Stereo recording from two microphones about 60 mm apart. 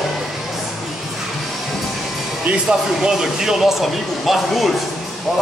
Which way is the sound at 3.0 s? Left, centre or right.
Centre.